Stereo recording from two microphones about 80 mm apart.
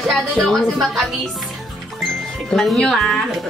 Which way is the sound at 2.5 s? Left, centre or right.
Centre.